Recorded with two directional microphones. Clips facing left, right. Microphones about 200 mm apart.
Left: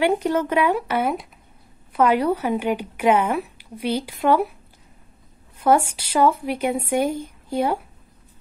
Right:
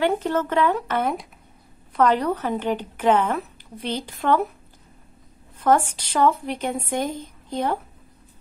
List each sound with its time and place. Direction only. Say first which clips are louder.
0.0 s a woman's voice: left 2 dB; 15° left (ahead or behind)
5.6 s a woman's voice: left 1 dB; 10° left (ahead or behind)